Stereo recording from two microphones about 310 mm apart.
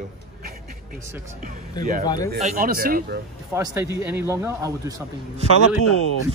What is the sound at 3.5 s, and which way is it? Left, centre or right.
A man's voice, centre.